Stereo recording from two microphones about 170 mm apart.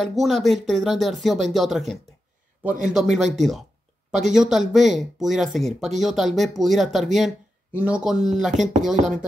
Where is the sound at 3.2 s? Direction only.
Centre (ahead or behind).